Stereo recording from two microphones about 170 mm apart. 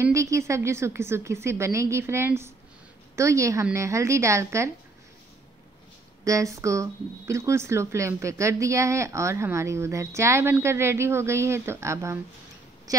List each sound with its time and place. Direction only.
0.0 s speech: 15° right (ahead or behind)
6.2 s speech: 20° right (ahead or behind)